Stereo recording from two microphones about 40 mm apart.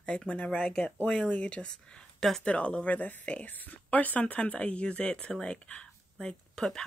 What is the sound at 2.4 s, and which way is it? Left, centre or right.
Speech, left.